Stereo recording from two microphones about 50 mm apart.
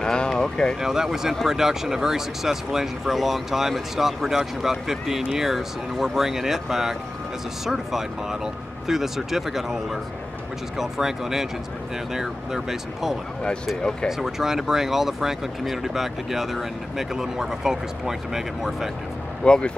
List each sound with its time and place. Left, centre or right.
0.0 s a sound: centre
0.7 s speech: centre
19.4 s speech: centre